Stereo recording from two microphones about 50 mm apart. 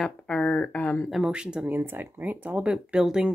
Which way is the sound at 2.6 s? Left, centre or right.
Right.